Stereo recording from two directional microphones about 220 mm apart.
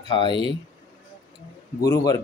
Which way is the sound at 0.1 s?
20° left (ahead or behind).